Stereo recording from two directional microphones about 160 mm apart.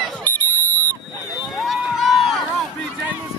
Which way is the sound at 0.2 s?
10° left (ahead or behind).